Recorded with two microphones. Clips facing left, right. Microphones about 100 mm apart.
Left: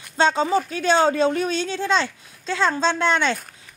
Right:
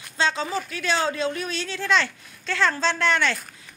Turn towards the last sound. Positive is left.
turn(degrees=20)  # may be behind; listen again after turning